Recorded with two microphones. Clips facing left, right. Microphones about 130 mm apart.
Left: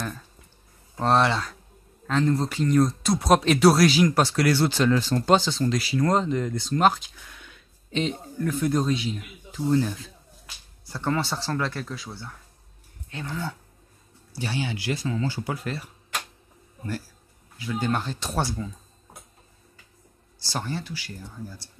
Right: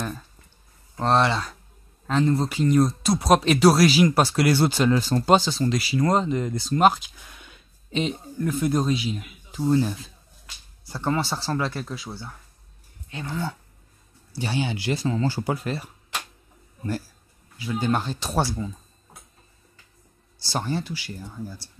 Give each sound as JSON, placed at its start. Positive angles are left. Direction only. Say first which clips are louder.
{"t": 0.9, "sound": "speech", "louder": "even", "side_deg": 0}
{"t": 14.4, "sound": "speech", "louder": "right 3 dB", "side_deg": -20}
{"t": 17.8, "sound": "speech", "louder": "right 3 dB", "side_deg": -15}
{"t": 20.5, "sound": "speech", "louder": "right 4 dB", "side_deg": -20}